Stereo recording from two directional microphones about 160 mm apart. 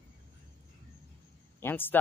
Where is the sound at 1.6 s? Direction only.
15° left (ahead or behind).